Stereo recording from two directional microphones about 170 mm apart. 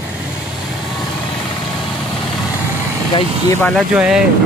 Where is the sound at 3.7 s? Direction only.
5° right (ahead or behind).